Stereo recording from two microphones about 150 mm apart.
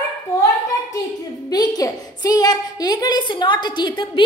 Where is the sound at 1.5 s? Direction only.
25° left (ahead or behind).